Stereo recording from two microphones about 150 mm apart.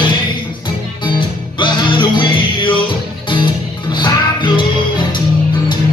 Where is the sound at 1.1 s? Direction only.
30° left (ahead or behind).